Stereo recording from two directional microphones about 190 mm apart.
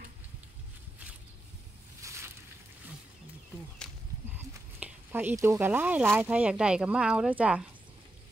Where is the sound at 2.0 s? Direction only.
15° right (ahead or behind).